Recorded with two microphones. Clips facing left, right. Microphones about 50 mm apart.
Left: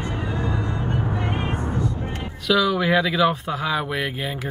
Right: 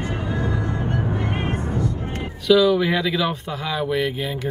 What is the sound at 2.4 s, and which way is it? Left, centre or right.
Speech, centre.